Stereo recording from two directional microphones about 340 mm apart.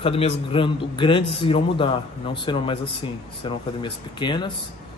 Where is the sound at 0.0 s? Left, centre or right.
Centre.